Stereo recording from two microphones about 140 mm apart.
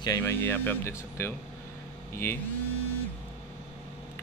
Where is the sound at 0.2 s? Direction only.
15° left (ahead or behind).